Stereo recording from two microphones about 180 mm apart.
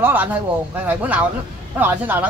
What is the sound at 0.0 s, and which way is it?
Speech, 10° right (ahead or behind).